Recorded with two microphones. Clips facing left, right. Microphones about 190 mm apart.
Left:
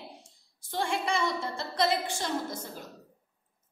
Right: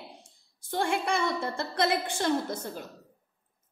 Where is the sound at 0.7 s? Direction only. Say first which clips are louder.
Right 2 dB; 55° right (ahead or behind).